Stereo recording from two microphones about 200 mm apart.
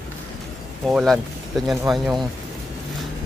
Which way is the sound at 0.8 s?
Centre (ahead or behind).